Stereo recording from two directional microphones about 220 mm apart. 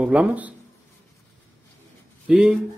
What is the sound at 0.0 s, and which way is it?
Speech, 5° right (ahead or behind).